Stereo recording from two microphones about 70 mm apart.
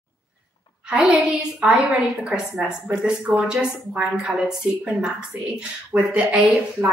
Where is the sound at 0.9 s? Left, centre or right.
Centre.